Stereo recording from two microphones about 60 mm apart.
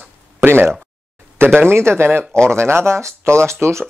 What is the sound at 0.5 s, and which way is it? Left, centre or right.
Speech, right.